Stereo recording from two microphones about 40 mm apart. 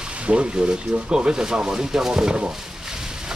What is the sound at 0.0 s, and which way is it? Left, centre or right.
Speech, right.